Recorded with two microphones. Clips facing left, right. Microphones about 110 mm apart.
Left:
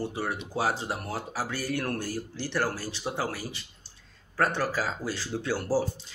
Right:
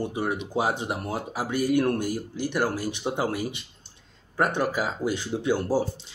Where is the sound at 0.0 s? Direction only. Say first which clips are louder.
Right 4 dB; 20° right (ahead or behind).